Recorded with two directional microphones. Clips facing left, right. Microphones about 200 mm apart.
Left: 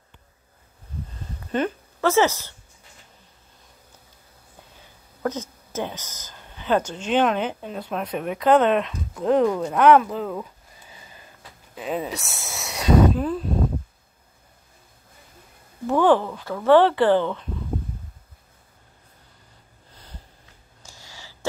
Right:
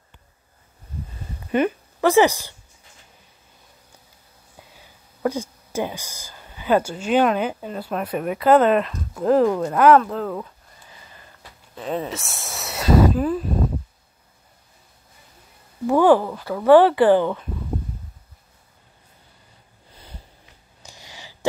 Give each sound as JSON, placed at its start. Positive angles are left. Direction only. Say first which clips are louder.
{"t": 1.5, "sound": "speech", "louder": "right 4 dB", "side_deg": -10}
{"t": 5.2, "sound": "speech", "louder": "right 3 dB", "side_deg": -10}
{"t": 11.7, "sound": "speech", "louder": "right 1 dB", "side_deg": 5}
{"t": 15.9, "sound": "speech", "louder": "right 3 dB", "side_deg": -10}
{"t": 20.8, "sound": "a sound", "louder": "right 3 dB", "side_deg": -15}